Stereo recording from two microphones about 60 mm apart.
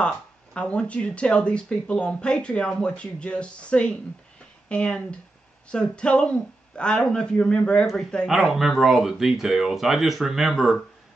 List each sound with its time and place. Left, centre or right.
0.6 s speech: left
8.3 s speech: centre